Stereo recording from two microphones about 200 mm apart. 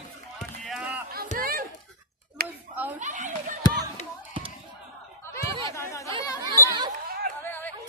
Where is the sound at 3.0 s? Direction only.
40° right (ahead or behind).